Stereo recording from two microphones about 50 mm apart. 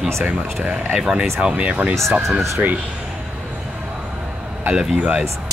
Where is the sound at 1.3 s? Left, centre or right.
Right.